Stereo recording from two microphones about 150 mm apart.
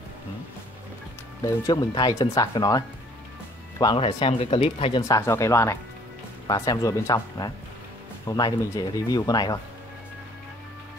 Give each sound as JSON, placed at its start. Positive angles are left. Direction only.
{"t": 1.4, "sound": "speech", "side_deg": 25}
{"t": 5.0, "sound": "speech", "side_deg": 20}